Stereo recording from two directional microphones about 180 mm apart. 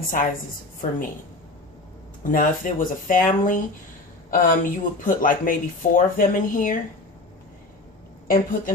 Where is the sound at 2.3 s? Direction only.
50° left (ahead or behind).